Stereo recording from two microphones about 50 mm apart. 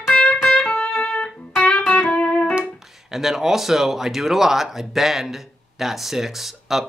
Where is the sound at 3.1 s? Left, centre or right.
Centre.